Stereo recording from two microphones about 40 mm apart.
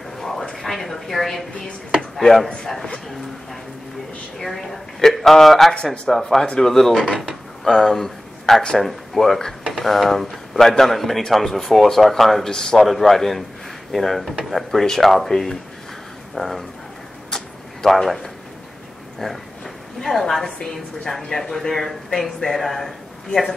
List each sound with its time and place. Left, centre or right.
0.2 s a sound: centre
2.0 s speech: centre
4.4 s speech: centre
12.4 s speech: centre
12.7 s speech: centre
17.8 s speech: centre